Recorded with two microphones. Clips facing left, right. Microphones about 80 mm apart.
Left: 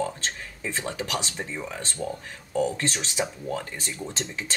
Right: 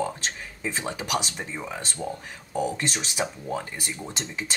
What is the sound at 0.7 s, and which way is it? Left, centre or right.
Speech, centre.